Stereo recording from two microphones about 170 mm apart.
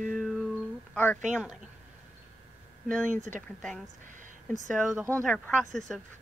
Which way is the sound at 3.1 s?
45° right (ahead or behind).